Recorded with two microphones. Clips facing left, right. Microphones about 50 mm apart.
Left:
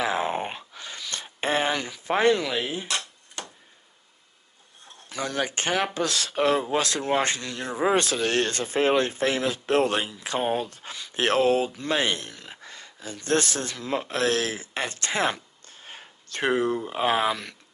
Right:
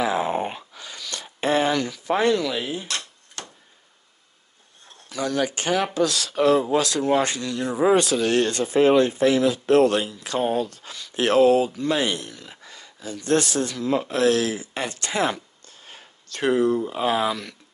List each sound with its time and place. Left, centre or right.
0.0 s a sound: left; by 3.5 s centre
5.1 s speech: left
9.8 s speech: left
11.1 s speech: left